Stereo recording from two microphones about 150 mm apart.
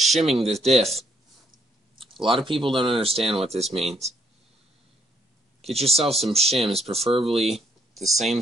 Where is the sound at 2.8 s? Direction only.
35° right (ahead or behind).